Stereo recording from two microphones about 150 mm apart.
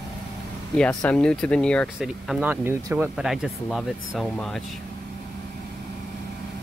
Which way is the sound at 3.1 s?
5° right (ahead or behind).